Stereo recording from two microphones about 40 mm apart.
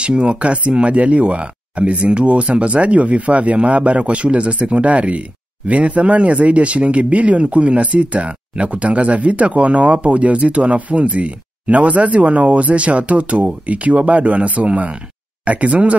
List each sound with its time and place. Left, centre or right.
0.0 s speech: right